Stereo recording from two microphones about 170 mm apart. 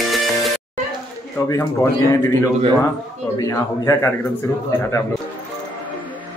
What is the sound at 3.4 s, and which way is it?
Speech, 20° left (ahead or behind).